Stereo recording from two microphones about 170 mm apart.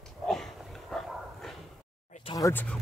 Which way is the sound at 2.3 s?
20° left (ahead or behind).